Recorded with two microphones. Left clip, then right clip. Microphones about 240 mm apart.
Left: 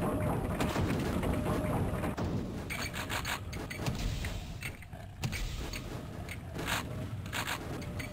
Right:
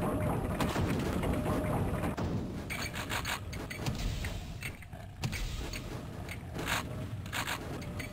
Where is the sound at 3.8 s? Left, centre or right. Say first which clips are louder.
Left 1 dB; centre.